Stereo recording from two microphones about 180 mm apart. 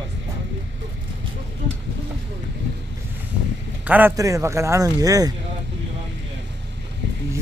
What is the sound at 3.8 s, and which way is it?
Speech, 10° right (ahead or behind).